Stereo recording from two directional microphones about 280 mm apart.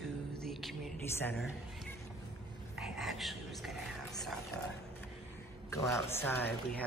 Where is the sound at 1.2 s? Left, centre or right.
Centre.